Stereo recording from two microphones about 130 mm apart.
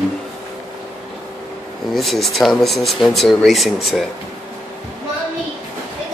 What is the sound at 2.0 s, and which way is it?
Speech, centre (ahead or behind).